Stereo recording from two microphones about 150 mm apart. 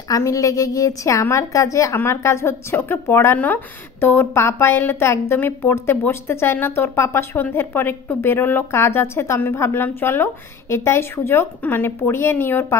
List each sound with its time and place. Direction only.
0.1 s speech: 20° left (ahead or behind)